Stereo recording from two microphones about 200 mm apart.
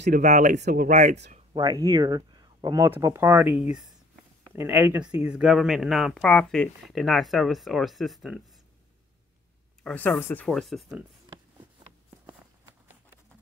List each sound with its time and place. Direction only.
0.2 s speech: 35° right (ahead or behind)
1.6 s speech: 15° right (ahead or behind); by 8.4 s centre (ahead or behind)
9.8 s speech: 10° left (ahead or behind)